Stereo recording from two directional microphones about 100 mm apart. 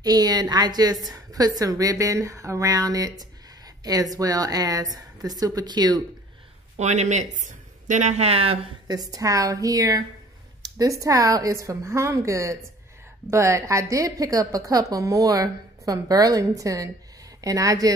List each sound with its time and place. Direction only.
0.0 s a woman's voice: 40° right (ahead or behind)
6.8 s speech: 90° right
8.1 s speech: 90° right
8.8 s a woman's voice: 40° right (ahead or behind)